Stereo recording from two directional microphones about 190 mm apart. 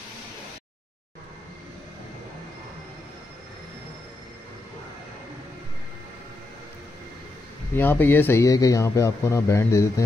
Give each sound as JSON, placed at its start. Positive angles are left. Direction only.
{"t": 7.7, "sound": "speech", "side_deg": 10}